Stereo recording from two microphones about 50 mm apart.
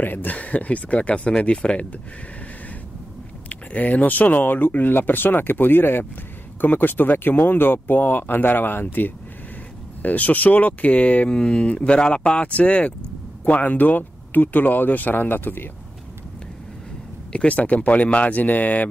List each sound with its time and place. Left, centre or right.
0.0 s speech: left
0.4 s speech: left
3.4 s speech: left
17.3 s speech: left